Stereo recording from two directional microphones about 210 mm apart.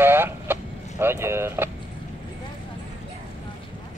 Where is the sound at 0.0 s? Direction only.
10° right (ahead or behind).